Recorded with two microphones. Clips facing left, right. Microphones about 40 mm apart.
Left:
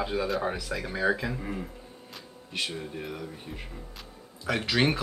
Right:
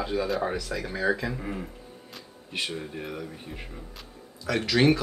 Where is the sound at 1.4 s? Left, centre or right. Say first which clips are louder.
Right 1 dB; centre.